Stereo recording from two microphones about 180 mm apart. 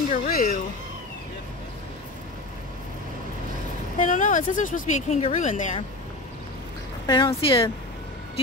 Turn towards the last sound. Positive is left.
turn(degrees=30)  # may be behind; listen again after turning